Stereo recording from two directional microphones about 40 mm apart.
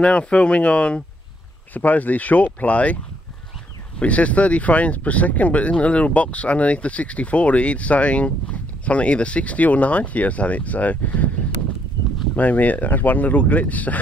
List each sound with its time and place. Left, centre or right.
0.0 s speech: left
1.7 s speech: left
4.0 s speech: left
12.4 s speech: left